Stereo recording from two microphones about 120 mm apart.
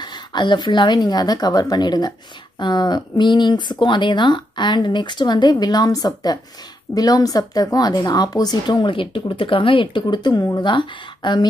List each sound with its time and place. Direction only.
0.0 s speech: 35° left (ahead or behind)